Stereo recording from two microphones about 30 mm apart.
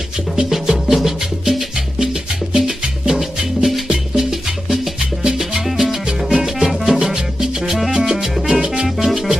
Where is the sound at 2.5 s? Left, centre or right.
Centre.